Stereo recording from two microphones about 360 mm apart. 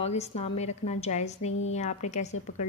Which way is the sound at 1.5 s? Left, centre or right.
Left.